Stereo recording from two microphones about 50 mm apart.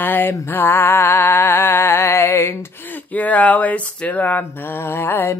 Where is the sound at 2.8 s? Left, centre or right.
Left.